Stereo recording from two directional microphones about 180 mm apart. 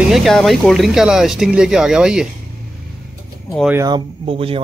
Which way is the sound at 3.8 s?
30° right (ahead or behind).